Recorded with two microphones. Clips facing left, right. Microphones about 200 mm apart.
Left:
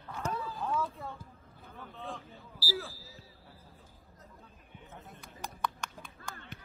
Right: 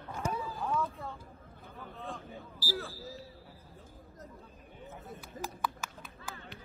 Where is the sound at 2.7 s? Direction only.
Centre (ahead or behind).